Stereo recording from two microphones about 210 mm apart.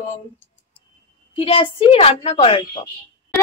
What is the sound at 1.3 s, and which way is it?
A woman's voice, 25° left (ahead or behind).